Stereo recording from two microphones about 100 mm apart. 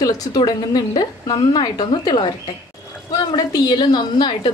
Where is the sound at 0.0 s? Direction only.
45° left (ahead or behind).